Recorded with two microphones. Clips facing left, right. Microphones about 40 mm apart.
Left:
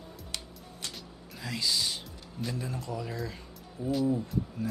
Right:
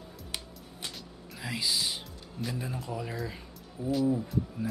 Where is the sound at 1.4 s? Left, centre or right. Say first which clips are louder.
Even; centre.